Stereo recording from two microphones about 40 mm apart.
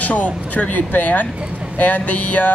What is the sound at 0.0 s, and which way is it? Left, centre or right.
A woman's voice, left.